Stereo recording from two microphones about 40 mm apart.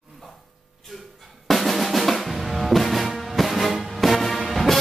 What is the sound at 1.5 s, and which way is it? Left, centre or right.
Drum, centre.